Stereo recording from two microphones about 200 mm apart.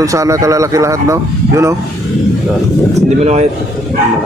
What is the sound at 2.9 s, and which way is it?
Speech, 35° right (ahead or behind).